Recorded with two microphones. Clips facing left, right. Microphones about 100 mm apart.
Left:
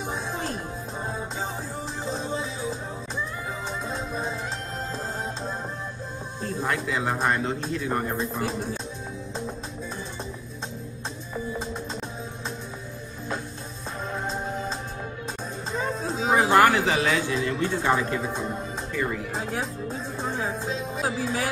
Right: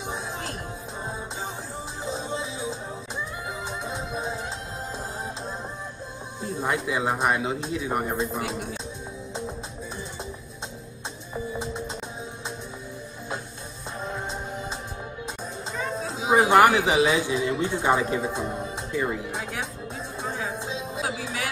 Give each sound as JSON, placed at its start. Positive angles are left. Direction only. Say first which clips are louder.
{"t": 2.0, "sound": "music", "louder": "even", "side_deg": -10}
{"t": 3.8, "sound": "music", "louder": "left 1 dB", "side_deg": -10}
{"t": 6.4, "sound": "speech", "louder": "right 1 dB", "side_deg": -20}
{"t": 8.5, "sound": "speech", "louder": "left 2 dB", "side_deg": 30}
{"t": 15.7, "sound": "music", "louder": "left 3 dB", "side_deg": 30}
{"t": 16.3, "sound": "speech", "louder": "right 2 dB", "side_deg": -15}
{"t": 19.3, "sound": "speech", "louder": "left 3 dB", "side_deg": 35}
{"t": 19.9, "sound": "music", "louder": "left 2 dB", "side_deg": 30}
{"t": 20.5, "sound": "music", "louder": "left 2 dB", "side_deg": -15}
{"t": 21.0, "sound": "music", "louder": "left 4 dB", "side_deg": 35}